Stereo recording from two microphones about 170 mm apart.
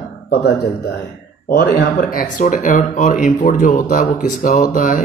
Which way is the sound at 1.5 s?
65° left (ahead or behind).